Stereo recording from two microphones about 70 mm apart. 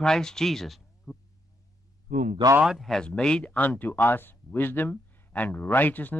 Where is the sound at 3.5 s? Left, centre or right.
Left.